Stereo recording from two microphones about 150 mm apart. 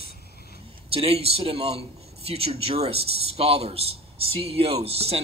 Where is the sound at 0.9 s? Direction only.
40° right (ahead or behind).